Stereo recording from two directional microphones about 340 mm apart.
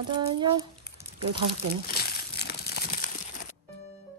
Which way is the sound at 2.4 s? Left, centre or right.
Left.